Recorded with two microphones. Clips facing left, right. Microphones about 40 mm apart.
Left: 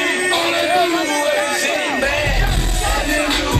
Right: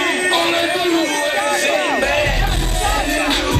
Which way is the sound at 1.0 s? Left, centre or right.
Centre.